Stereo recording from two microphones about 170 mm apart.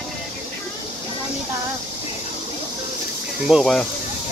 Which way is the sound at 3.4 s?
Centre (ahead or behind).